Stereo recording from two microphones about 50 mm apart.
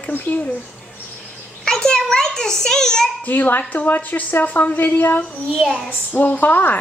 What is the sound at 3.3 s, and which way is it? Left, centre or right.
A woman's voice, left.